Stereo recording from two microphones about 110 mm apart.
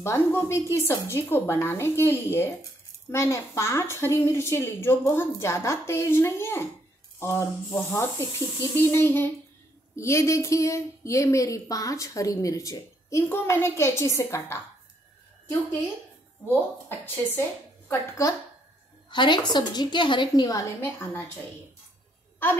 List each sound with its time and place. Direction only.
0.0 s a woman's voice: 25° left (ahead or behind)
16.5 s a woman's voice: 20° left (ahead or behind)
19.0 s a woman's voice: 45° left (ahead or behind)